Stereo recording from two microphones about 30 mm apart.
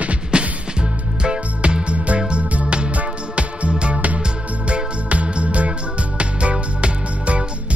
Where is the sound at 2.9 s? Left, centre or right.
Right.